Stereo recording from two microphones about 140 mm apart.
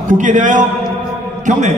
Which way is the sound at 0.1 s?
65° right (ahead or behind).